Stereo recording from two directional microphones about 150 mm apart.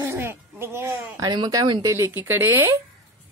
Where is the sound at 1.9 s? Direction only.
15° right (ahead or behind).